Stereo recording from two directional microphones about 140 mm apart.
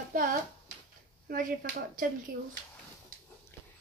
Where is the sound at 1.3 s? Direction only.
80° right.